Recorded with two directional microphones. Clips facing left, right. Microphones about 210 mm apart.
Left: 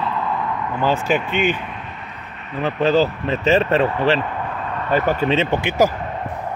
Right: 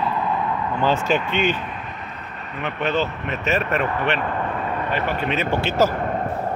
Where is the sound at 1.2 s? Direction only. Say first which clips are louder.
Left 2 dB; 50° left (ahead or behind).